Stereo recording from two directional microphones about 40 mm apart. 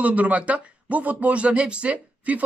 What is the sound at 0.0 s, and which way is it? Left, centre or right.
Speech, right.